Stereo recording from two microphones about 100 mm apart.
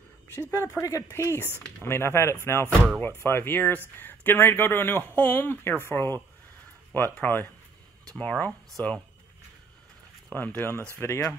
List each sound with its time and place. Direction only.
0.5 s speech: 30° left (ahead or behind); by 9.0 s 5° left (ahead or behind)
10.3 s speech: 15° left (ahead or behind)
11.0 s speech: 30° left (ahead or behind)